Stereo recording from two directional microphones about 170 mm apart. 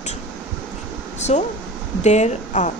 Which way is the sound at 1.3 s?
40° left (ahead or behind).